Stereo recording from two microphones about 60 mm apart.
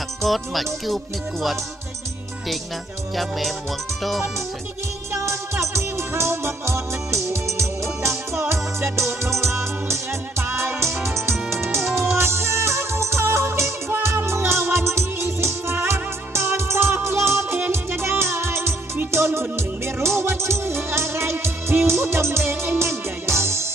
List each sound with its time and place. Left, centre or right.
0.2 s music: centre
3.2 s music: centre
5.1 s music: right